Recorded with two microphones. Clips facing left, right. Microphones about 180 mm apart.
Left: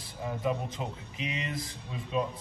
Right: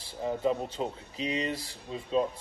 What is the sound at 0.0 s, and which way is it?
A man's voice, 30° right (ahead or behind).